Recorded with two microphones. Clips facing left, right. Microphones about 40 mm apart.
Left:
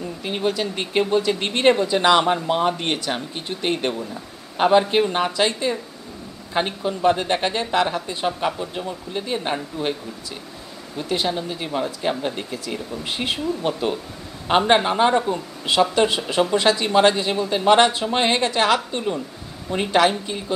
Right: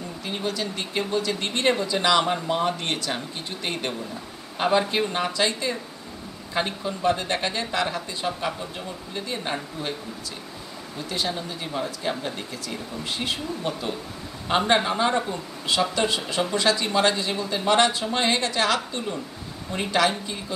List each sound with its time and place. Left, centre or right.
0.2 s speech: left
11.0 s speech: left